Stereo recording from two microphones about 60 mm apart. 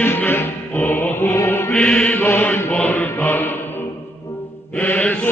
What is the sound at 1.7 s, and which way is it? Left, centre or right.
Mantra, centre.